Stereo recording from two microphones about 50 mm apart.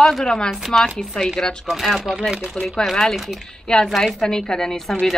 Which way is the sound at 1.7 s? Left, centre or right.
Centre.